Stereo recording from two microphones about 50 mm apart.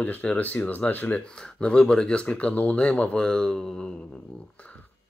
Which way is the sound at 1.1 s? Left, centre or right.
Left.